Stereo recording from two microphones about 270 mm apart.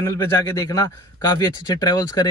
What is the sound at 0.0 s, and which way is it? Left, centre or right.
Speech, centre.